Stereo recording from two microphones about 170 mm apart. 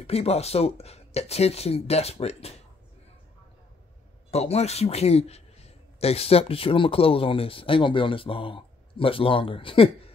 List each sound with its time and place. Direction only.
0.0 s a man's voice: 35° left (ahead or behind)
4.3 s a man's voice: 40° left (ahead or behind)